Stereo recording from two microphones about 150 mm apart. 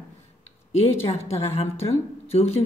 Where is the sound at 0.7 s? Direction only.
45° left (ahead or behind).